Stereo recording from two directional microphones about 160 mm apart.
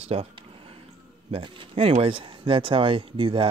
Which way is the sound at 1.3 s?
35° right (ahead or behind).